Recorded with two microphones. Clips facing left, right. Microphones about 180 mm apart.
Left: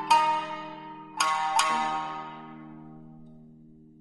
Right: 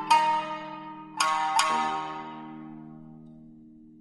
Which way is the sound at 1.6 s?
Centre (ahead or behind).